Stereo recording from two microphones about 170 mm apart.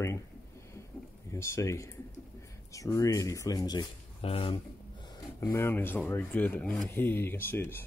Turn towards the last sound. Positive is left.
turn(degrees=15)  # may be behind; listen again after turning